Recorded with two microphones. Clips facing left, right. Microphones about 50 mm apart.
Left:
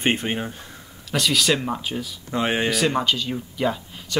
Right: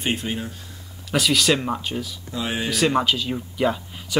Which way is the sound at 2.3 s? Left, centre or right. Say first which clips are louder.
Left 5 dB; left.